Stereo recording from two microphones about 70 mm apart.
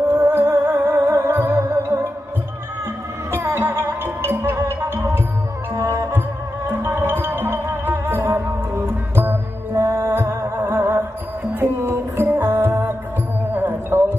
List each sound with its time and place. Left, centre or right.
0.1 s music: right
3.3 s music: right